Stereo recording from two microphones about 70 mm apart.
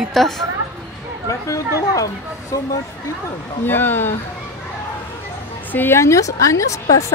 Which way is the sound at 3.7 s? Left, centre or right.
Left.